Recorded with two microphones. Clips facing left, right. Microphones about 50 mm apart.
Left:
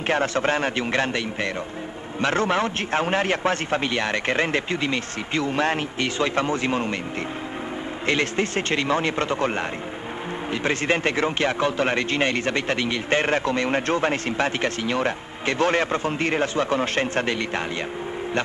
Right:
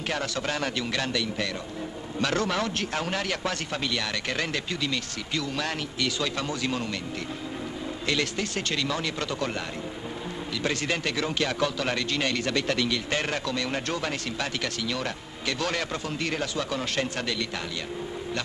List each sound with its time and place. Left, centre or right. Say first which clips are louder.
0.0 s speech: left 8 dB; left
8.1 s speech: left 6 dB; left